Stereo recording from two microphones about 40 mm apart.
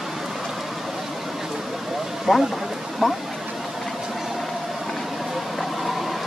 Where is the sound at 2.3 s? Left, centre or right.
Centre.